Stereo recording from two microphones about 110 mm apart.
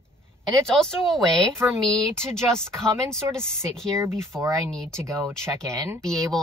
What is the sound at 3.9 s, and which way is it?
Speech, 25° right (ahead or behind).